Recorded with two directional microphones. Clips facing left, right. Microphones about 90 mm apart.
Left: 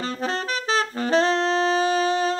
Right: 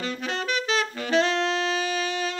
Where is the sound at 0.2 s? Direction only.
35° left (ahead or behind).